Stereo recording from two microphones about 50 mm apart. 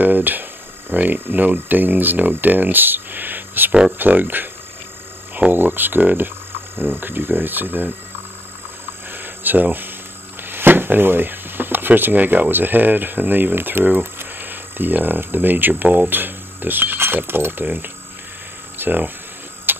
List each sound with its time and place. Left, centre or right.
0.0 s speech: right
5.5 s speech: right
9.1 s cricket: right
10.4 s speech: right
19.7 s a sound: right